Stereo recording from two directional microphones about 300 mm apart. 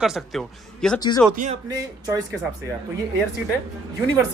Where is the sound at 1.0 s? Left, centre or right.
Centre.